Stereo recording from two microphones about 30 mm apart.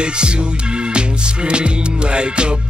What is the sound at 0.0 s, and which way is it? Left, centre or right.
Music, right.